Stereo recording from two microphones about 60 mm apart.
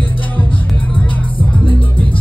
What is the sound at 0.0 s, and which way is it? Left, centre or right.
Music, left.